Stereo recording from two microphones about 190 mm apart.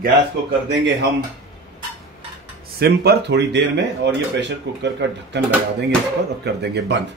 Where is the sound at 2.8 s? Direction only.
60° right (ahead or behind).